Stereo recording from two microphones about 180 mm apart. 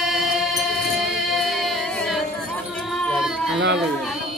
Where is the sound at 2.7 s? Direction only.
Centre (ahead or behind).